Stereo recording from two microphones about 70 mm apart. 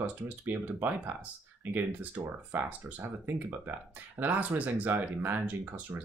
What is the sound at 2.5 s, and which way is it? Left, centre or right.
Speech, right.